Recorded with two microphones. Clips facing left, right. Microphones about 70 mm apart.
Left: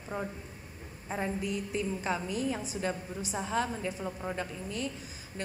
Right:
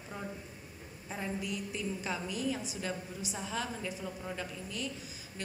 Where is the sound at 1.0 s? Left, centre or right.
Left.